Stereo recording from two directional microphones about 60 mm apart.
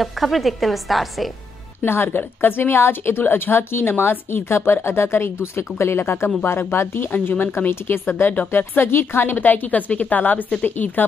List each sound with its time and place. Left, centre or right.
0.0 s a woman's voice: centre
1.8 s a woman's voice: left